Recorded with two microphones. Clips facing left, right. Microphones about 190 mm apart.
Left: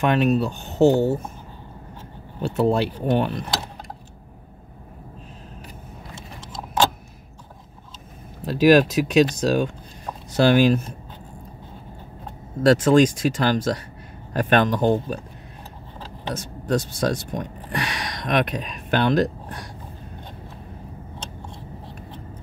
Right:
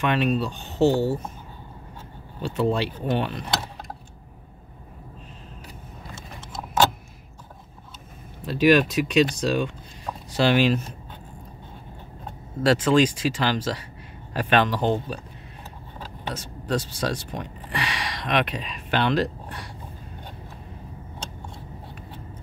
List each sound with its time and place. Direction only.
0.0 s speech: 45° left (ahead or behind)
2.4 s speech: 45° left (ahead or behind)
8.4 s speech: 40° left (ahead or behind)
12.6 s speech: 45° left (ahead or behind)
16.3 s speech: 45° left (ahead or behind)